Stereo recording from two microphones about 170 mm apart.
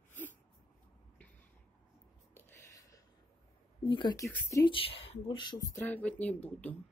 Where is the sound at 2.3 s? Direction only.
15° left (ahead or behind).